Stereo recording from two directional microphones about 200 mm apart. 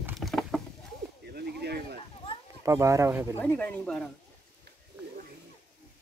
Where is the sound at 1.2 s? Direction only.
55° right (ahead or behind).